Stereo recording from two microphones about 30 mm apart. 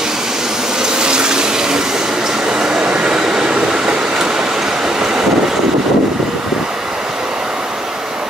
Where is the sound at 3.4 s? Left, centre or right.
Right.